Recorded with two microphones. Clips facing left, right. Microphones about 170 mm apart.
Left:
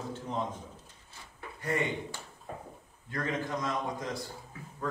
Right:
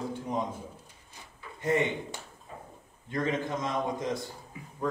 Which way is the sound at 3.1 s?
20° right (ahead or behind).